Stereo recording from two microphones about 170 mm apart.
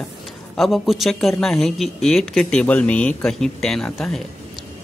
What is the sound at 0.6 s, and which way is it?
Speech, centre (ahead or behind).